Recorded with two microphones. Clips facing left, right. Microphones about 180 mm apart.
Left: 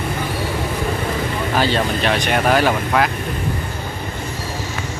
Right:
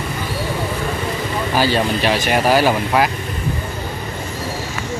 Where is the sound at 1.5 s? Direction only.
5° right (ahead or behind).